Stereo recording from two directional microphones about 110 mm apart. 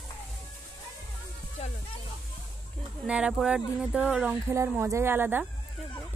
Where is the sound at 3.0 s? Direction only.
10° right (ahead or behind).